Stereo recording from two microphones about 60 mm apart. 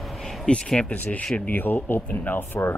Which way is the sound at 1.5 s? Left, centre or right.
Left.